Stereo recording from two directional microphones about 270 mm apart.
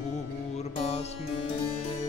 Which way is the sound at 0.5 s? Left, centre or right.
Left.